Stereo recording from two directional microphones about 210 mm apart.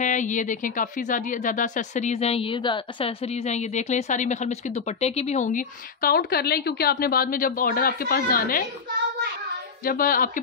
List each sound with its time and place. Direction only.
0.0 s speech: 35° left (ahead or behind)
9.8 s music: 45° left (ahead or behind)